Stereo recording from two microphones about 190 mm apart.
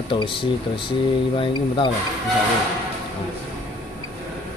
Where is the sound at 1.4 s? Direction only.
25° left (ahead or behind).